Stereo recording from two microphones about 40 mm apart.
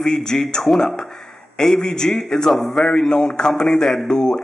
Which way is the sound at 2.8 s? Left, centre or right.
Centre.